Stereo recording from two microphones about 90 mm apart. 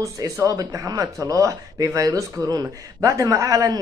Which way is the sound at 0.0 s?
40° right (ahead or behind).